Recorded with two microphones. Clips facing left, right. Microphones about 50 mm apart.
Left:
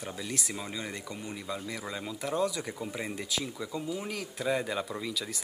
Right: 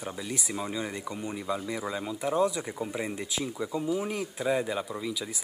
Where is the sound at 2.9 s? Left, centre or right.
Centre.